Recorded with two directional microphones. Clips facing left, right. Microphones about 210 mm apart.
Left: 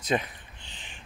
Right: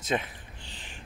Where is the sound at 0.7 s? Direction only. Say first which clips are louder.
Right 1 dB; 40° right (ahead or behind).